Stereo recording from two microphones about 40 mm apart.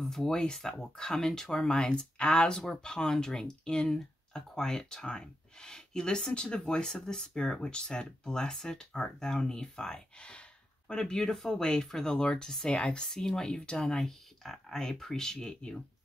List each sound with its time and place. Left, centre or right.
0.0 s speech: centre
2.5 s speech: centre; by 13.0 s left
13.0 s speech: centre
13.9 s speech: centre